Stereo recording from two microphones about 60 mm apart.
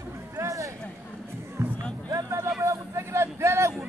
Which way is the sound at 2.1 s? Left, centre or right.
Right.